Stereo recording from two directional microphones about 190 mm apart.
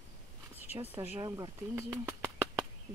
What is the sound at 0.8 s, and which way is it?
Speech, 20° right (ahead or behind).